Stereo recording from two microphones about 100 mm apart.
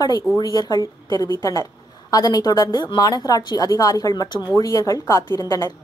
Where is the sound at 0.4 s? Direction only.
40° left (ahead or behind).